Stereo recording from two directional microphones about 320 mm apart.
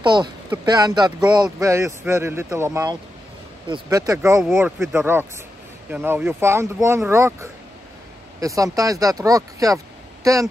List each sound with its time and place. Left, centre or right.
0.0 s speech: centre